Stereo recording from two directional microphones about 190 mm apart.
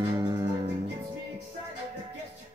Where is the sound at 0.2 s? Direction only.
15° right (ahead or behind).